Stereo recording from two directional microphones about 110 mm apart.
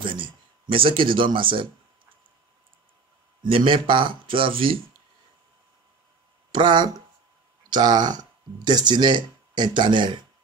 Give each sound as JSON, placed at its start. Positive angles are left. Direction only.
{"t": 0.0, "sound": "speech", "side_deg": -50}
{"t": 3.4, "sound": "speech", "side_deg": -55}
{"t": 6.5, "sound": "speech", "side_deg": -45}